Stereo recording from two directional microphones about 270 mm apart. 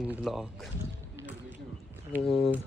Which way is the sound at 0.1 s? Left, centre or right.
Centre.